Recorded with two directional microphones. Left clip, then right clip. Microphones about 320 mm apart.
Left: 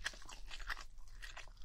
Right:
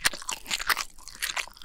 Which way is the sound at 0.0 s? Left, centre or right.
Right.